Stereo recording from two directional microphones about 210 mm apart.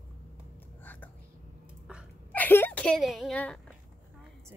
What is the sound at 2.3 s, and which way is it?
Whimper, 10° left (ahead or behind).